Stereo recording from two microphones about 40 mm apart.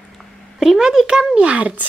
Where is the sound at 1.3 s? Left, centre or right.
Right.